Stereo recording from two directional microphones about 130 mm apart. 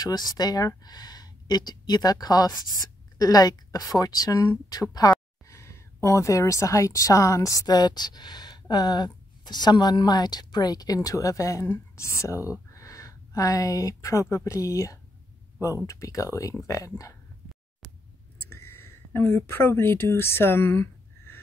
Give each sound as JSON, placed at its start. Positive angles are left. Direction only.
{"t": 0.0, "sound": "a woman's voice", "side_deg": 30}
{"t": 18.5, "sound": "speech", "side_deg": 20}